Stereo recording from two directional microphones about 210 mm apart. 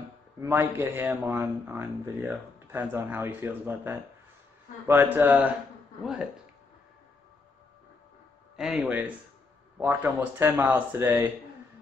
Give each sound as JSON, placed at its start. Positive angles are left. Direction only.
{"t": 0.4, "sound": "speech", "side_deg": -15}
{"t": 8.5, "sound": "speech", "side_deg": 0}